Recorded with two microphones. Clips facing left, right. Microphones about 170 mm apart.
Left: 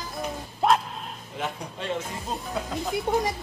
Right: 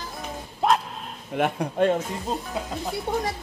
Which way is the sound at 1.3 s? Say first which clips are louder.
Right 11 dB; 55° right (ahead or behind).